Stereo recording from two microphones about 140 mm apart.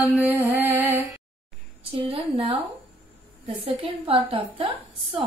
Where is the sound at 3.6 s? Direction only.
40° right (ahead or behind).